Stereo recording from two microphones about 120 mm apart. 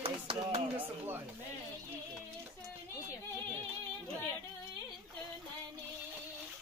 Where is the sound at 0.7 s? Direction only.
15° right (ahead or behind).